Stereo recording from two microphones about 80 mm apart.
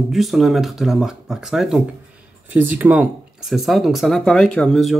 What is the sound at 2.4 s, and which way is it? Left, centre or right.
Speech, right.